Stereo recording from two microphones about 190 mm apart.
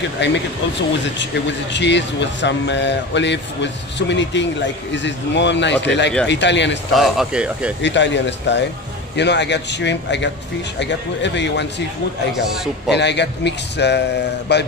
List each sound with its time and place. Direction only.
0.2 s speech: 70° left (ahead or behind)
7.0 s speech: 5° right (ahead or behind)
7.8 s speech: 70° left (ahead or behind)
12.9 s speech: 65° left (ahead or behind)